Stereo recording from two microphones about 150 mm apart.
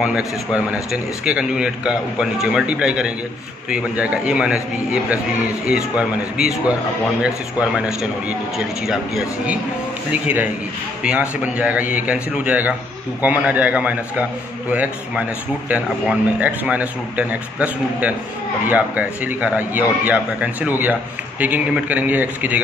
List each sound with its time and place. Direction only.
0.0 s a man's voice: 5° right (ahead or behind)
5.7 s a man's voice: 5° right (ahead or behind)